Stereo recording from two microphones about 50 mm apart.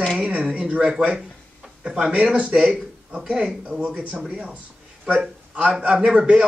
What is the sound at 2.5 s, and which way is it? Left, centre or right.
Speech, centre.